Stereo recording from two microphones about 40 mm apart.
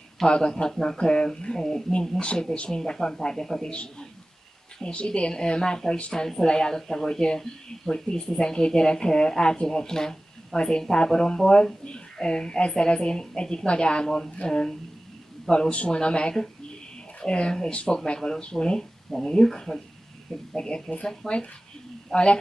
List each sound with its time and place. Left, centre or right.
0.3 s speech: left
2.0 s speech: left
4.8 s speech: left
11.8 s speech: left
15.7 s speech: left
22.1 s speech: left